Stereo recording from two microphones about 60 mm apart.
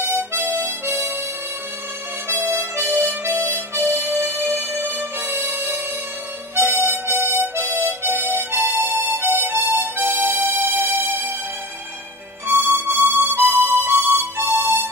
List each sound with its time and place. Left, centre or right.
0.0 s harmonica: right
2.2 s harmonica: right
12.5 s music: right